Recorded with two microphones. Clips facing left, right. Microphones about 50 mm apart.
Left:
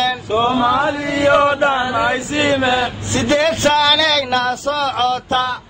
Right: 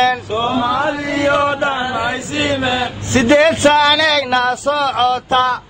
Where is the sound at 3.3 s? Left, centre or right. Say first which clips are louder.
Right 4 dB; right.